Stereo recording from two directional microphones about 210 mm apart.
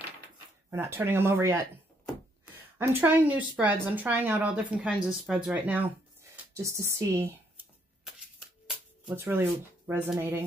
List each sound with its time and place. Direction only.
0.7 s a woman's voice: 10° right (ahead or behind)
8.6 s speech: 5° right (ahead or behind)